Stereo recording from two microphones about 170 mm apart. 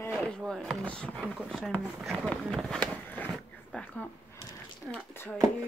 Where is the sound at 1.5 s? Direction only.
5° left (ahead or behind).